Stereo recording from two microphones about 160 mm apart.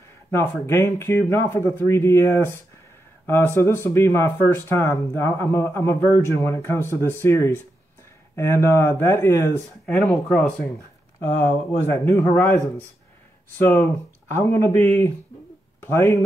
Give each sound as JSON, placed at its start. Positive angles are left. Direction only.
{"t": 0.3, "sound": "speech", "side_deg": 15}
{"t": 9.8, "sound": "speech", "side_deg": 5}
{"t": 11.2, "sound": "speech", "side_deg": 15}